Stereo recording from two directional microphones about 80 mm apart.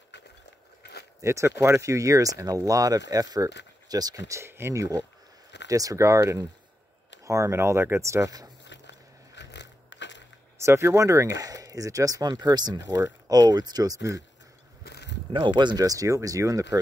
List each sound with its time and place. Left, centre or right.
1.2 s speech: right
4.4 s speech: right
5.7 s speech: right
10.6 s speech: right
15.3 s speech: right